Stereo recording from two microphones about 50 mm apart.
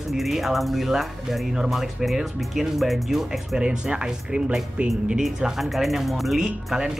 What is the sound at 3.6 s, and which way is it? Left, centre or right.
Speech, centre.